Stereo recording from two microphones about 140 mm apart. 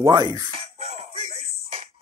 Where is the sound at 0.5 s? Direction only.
50° right (ahead or behind).